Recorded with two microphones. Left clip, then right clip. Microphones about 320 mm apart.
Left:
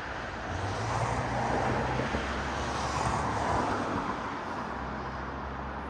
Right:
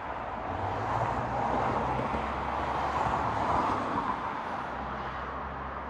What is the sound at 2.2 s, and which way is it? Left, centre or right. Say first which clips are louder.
Vehicle: right 2 dB; right.